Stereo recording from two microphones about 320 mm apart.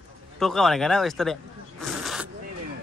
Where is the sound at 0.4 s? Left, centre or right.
Centre.